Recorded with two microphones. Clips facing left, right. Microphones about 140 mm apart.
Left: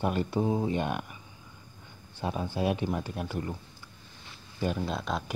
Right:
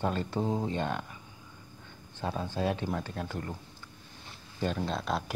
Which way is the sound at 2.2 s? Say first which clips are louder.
Left 2 dB; 15° left (ahead or behind).